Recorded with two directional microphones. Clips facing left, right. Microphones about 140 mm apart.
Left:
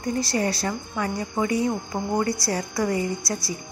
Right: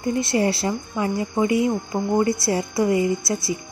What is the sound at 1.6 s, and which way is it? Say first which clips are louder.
Speech: right 3 dB; 5° right (ahead or behind).